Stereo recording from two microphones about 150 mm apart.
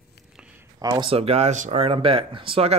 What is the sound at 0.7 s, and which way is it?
Speech, 25° right (ahead or behind).